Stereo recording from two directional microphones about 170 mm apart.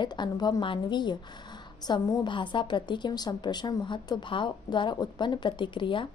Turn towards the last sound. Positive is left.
turn(degrees=30)  # may be behind; listen again after turning